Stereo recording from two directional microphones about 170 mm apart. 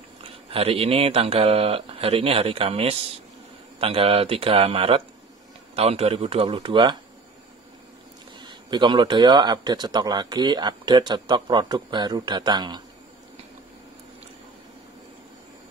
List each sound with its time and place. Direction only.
0.5 s speech: 35° right (ahead or behind)
8.4 s speech: 25° right (ahead or behind)